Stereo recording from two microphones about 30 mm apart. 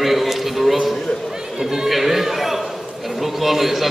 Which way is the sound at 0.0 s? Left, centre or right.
Centre.